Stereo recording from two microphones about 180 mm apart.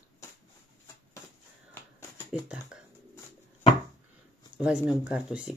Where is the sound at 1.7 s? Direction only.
15° left (ahead or behind).